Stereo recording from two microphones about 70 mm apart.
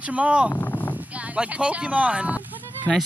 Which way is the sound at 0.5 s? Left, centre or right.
Left.